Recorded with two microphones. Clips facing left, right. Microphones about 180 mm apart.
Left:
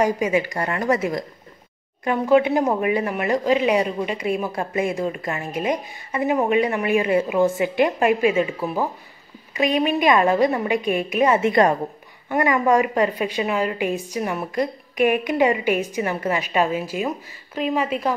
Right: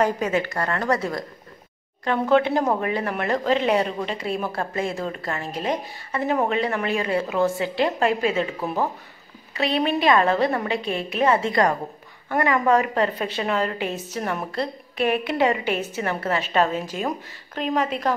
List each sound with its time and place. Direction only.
0.0 s a woman's voice: 10° left (ahead or behind)
2.0 s a woman's voice: 10° left (ahead or behind)
9.5 s a woman's voice: 15° left (ahead or behind)